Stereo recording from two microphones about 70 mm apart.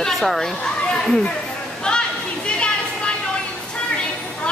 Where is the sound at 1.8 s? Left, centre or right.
Centre.